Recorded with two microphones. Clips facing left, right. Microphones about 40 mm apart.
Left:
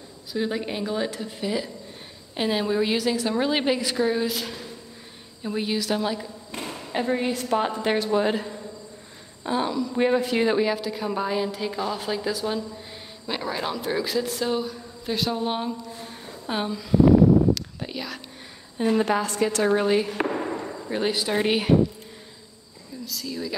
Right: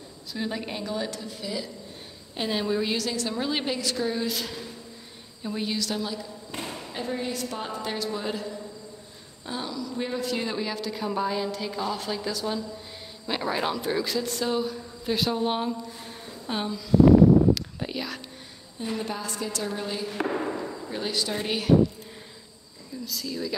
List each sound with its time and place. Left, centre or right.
0.3 s a woman's voice: centre; by 1.7 s left
2.3 s a woman's voice: centre
4.3 s speech: centre
5.5 s a woman's voice: centre
5.9 s a woman's voice: left
9.4 s a woman's voice: left
10.7 s a woman's voice: centre
13.3 s speech: centre
17.6 s a sound: centre
18.8 s a woman's voice: left
19.0 s a woman's voice: left
20.2 s a sound: centre
20.9 s a woman's voice: left
23.0 s speech: centre